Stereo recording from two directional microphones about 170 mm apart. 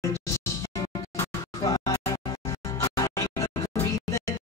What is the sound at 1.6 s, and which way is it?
Music, 20° left (ahead or behind).